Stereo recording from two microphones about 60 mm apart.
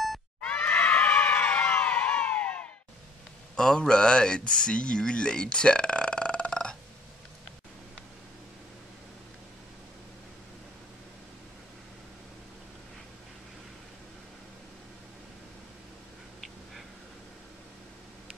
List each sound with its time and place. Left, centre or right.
0.6 s screaming: left
3.5 s speech: centre